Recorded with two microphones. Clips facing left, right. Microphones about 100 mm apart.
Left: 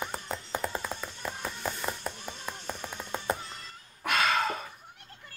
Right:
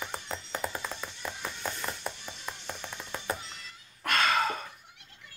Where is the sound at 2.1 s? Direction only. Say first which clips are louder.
Left 4 dB; 45° left (ahead or behind).